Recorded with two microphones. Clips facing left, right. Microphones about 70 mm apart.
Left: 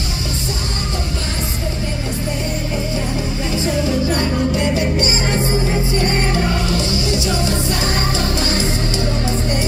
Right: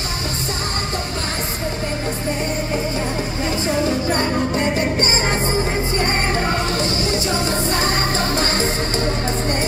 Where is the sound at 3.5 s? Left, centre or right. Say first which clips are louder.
Left 1 dB; right.